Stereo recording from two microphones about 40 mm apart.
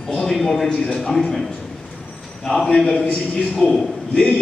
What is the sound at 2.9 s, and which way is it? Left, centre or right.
A man's voice, left.